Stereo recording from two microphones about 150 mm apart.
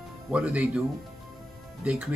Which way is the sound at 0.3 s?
10° right (ahead or behind).